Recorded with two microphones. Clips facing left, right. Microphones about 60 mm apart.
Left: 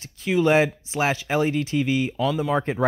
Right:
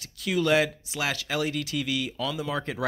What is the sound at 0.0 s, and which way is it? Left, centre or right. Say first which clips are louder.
Speech: left 5 dB; left.